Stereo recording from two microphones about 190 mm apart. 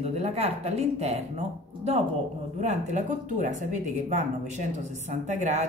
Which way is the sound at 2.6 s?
40° right (ahead or behind).